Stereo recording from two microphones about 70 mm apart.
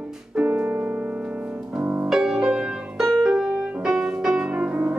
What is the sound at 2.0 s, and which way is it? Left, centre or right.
Music, centre.